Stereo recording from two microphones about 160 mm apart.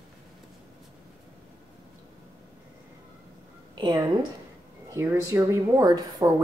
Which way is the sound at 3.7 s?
25° right (ahead or behind).